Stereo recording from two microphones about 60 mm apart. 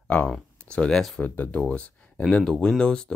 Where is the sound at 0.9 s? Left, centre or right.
Centre.